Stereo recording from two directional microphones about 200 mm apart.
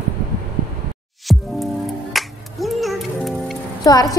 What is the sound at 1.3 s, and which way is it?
Music, centre (ahead or behind).